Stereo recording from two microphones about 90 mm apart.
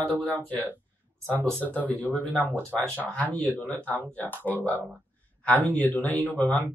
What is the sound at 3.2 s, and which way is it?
Speech, 15° left (ahead or behind).